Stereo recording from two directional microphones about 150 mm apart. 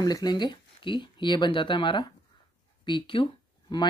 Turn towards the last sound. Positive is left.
turn(degrees=35)  # may be behind; listen again after turning